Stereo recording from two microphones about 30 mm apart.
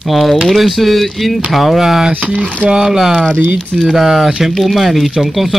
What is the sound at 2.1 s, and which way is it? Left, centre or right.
Speech, right.